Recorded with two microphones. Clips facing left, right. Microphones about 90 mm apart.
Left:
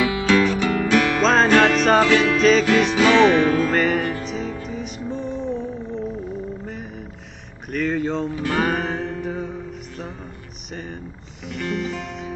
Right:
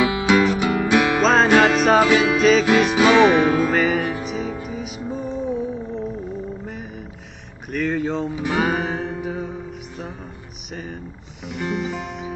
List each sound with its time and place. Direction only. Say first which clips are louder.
0.0 s music: right 1 dB; 20° right (ahead or behind)
1.2 s music: even; centre (ahead or behind)
3.0 s music: even; 15° right (ahead or behind)
3.7 s music: even; centre (ahead or behind)
7.7 s speech: even; centre (ahead or behind)
8.4 s music: right 1 dB; 10° right (ahead or behind)
10.7 s speech: even; centre (ahead or behind)
11.4 s music: right 1 dB; 5° right (ahead or behind)